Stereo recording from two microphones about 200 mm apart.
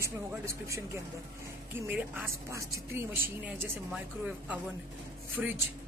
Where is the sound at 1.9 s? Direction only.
10° right (ahead or behind).